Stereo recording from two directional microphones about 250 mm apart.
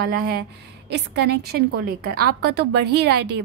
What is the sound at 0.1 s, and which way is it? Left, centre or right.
A woman's voice, right.